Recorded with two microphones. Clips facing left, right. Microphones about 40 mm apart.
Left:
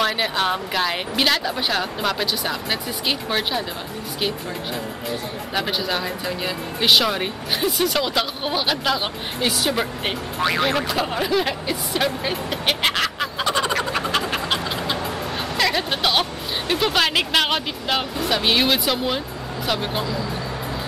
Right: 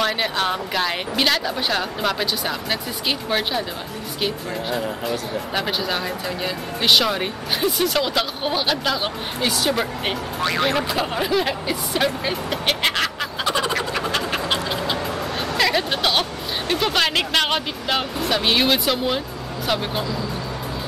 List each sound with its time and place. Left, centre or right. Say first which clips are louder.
0.0 s speech: even; centre
5.5 s speech: left 1 dB; centre